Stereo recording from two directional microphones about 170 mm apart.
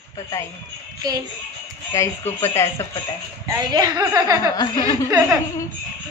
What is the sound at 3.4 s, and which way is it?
A woman's voice, 20° right (ahead or behind).